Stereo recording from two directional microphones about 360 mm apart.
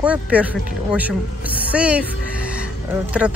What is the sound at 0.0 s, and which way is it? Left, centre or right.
Speech, centre.